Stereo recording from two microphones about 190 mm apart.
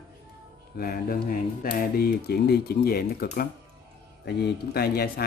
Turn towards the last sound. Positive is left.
turn(degrees=55)  # may be behind; listen again after turning